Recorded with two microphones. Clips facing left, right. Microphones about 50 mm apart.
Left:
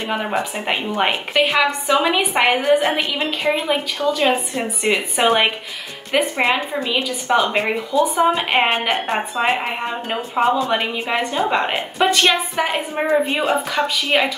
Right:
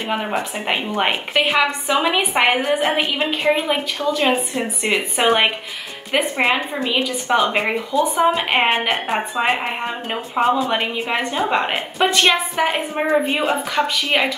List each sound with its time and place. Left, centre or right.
0.1 s a woman's voice: centre
12.1 s a woman's voice: centre
12.5 s a woman's voice: centre